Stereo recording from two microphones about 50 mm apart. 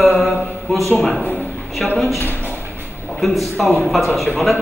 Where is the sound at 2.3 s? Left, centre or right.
Left.